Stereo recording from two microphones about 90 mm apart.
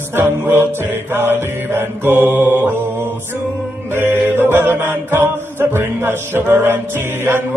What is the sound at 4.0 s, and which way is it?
Music, 25° right (ahead or behind).